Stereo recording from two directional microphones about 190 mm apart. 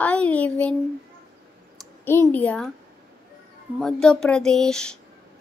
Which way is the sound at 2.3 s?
5° left (ahead or behind).